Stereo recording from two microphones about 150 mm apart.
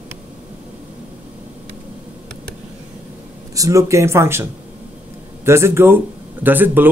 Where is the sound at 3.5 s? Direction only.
20° right (ahead or behind).